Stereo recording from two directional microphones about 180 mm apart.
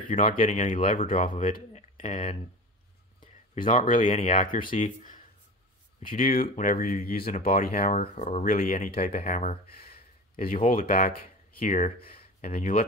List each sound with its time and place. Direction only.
0.1 s speech: 45° left (ahead or behind)
3.5 s speech: 45° left (ahead or behind)
8.0 s speech: 35° left (ahead or behind)
12.0 s a sound: 30° left (ahead or behind)
12.4 s speech: 50° left (ahead or behind)